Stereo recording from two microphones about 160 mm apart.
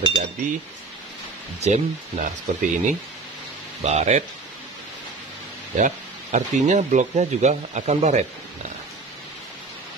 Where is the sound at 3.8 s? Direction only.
45° right (ahead or behind).